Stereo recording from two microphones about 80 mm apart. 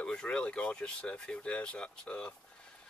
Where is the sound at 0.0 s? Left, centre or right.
Centre.